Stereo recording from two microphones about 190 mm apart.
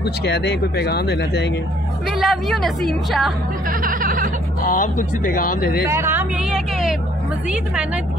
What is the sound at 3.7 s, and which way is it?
Speech, 45° right (ahead or behind).